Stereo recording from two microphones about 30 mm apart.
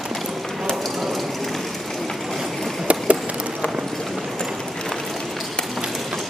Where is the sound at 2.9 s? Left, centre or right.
Right.